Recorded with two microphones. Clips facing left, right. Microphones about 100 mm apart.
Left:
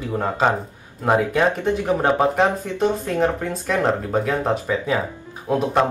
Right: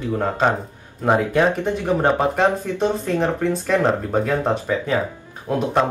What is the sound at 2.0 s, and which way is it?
Speech, centre (ahead or behind).